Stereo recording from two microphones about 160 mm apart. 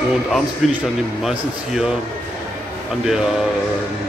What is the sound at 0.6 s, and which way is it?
A man's voice, centre (ahead or behind).